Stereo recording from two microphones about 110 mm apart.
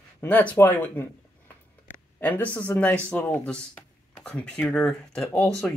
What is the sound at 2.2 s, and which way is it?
Speech, 15° left (ahead or behind).